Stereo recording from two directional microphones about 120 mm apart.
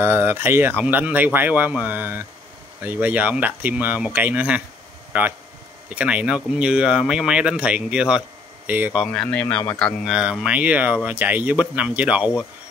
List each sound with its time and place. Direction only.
0.0 s speech: 20° right (ahead or behind)
9.0 s a man's voice: 5° left (ahead or behind)
10.4 s speech: 10° right (ahead or behind)